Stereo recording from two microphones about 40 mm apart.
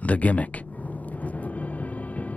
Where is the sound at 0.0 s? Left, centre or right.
Left.